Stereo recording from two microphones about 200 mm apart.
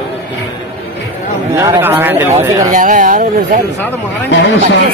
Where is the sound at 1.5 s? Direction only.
15° right (ahead or behind).